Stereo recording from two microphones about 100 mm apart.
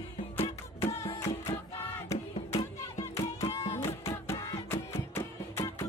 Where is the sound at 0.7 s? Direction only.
30° left (ahead or behind).